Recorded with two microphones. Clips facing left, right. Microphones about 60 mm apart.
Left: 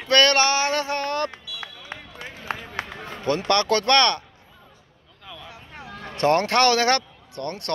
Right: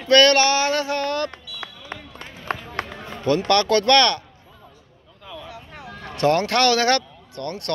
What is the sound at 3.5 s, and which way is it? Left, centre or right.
Speech, left.